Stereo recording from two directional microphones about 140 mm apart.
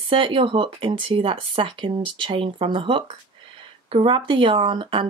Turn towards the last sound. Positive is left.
turn(degrees=-35)  # may be behind; listen again after turning